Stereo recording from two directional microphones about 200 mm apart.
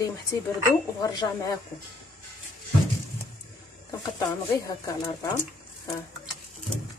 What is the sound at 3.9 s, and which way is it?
Speech, 15° left (ahead or behind).